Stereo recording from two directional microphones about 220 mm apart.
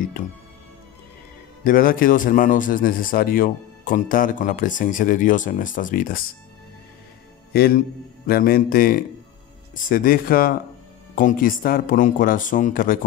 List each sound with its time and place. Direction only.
1.6 s a man's voice: 40° left (ahead or behind)
7.5 s a man's voice: 45° left (ahead or behind)